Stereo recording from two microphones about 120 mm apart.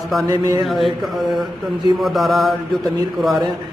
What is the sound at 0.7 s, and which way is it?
A man's voice, centre (ahead or behind).